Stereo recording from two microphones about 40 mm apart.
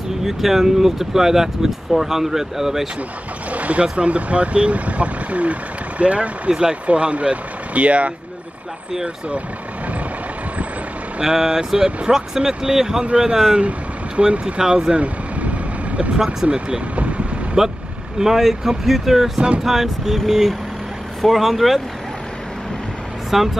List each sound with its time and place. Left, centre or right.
0.2 s speech: centre
3.5 s speech: right
6.5 s speech: right
6.9 s speech: right
11.1 s speech: centre
13.6 s speech: right
15.0 s vehicle: right
16.4 s speech: right
17.6 s speech: centre
23.3 s speech: centre